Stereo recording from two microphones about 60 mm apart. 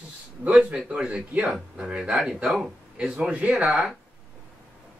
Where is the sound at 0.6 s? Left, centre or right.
Centre.